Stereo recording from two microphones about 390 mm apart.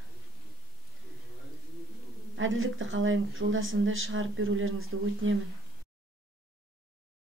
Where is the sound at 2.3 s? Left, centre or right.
Right.